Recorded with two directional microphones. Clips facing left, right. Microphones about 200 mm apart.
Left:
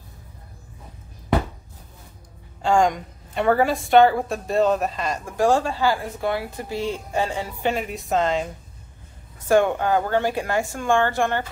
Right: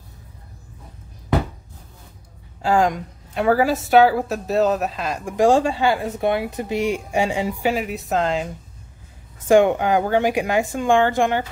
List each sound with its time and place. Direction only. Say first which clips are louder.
2.6 s a woman's voice: right 1 dB; centre (ahead or behind)
5.2 s speech: right 4 dB; 15° right (ahead or behind)
7.7 s a woman's voice: right 1 dB; centre (ahead or behind)
9.5 s speech: right 3 dB; 15° right (ahead or behind)